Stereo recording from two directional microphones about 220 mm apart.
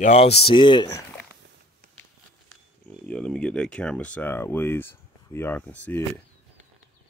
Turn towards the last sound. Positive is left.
turn(degrees=10)  # may be behind; listen again after turning